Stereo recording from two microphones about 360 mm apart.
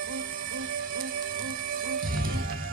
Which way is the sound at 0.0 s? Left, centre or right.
Right.